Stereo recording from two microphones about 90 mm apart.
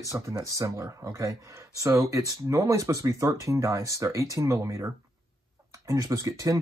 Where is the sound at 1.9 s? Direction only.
35° right (ahead or behind).